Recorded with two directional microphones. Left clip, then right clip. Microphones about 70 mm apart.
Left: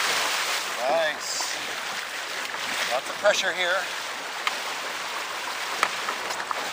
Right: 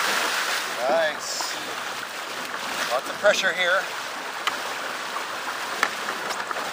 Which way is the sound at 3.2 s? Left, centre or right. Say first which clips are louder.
Right 2 dB; right.